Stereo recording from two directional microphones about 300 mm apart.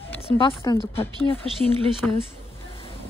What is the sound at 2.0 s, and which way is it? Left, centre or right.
Speech, centre.